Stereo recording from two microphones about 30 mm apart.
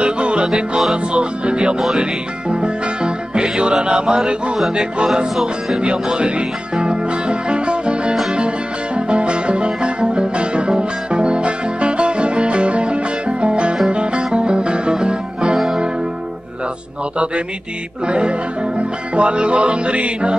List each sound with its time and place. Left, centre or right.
0.0 s music: right
1.1 s speech: right
2.5 s music: right
4.7 s speech: right
8.9 s music: right
18.0 s music: right